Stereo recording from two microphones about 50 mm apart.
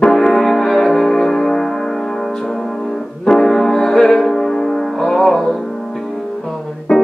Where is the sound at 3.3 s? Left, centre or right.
Centre.